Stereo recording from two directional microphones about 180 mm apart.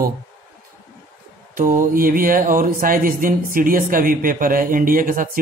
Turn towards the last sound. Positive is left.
turn(degrees=-50)  # may be behind; listen again after turning